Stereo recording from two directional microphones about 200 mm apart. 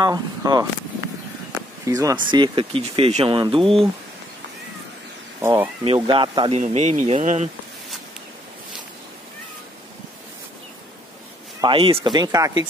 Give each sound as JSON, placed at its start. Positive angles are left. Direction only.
{"t": 0.0, "sound": "speech", "side_deg": -20}
{"t": 1.9, "sound": "speech", "side_deg": -15}
{"t": 5.4, "sound": "speech", "side_deg": -15}
{"t": 5.9, "sound": "speech", "side_deg": -25}
{"t": 6.6, "sound": "speech", "side_deg": -35}
{"t": 11.6, "sound": "speech", "side_deg": -25}